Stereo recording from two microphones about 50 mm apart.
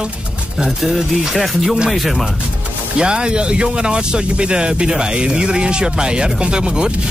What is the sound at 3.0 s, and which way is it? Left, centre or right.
Speech, centre.